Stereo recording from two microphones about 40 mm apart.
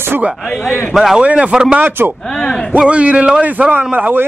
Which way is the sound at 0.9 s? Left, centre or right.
Centre.